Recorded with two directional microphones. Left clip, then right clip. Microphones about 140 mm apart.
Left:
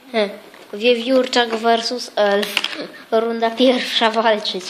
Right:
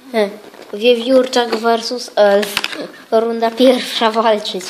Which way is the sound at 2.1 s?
25° right (ahead or behind).